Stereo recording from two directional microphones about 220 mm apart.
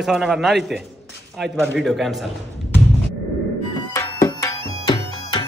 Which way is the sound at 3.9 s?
15° left (ahead or behind).